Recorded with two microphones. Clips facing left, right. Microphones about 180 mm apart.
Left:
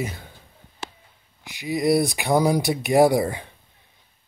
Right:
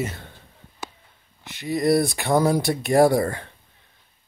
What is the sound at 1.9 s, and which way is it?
Speech, 15° left (ahead or behind).